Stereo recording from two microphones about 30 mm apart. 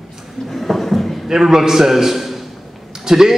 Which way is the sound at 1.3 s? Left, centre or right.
Centre.